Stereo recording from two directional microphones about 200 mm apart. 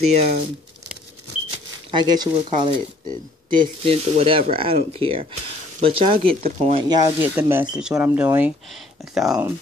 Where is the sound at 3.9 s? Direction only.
25° right (ahead or behind).